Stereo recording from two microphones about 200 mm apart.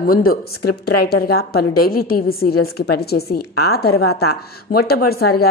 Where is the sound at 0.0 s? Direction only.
45° left (ahead or behind).